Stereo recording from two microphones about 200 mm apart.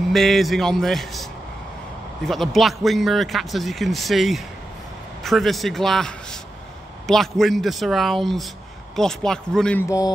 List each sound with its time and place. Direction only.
0.1 s a man's voice: centre (ahead or behind)
2.2 s a man's voice: centre (ahead or behind)
9.8 s a sound: 15° left (ahead or behind)